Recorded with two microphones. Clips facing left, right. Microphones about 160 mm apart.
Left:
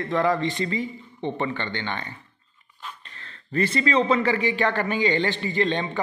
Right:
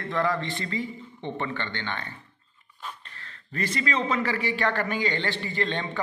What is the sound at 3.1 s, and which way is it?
A man's voice, 30° left (ahead or behind).